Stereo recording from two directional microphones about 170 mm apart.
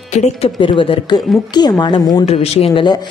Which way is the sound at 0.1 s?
40° left (ahead or behind).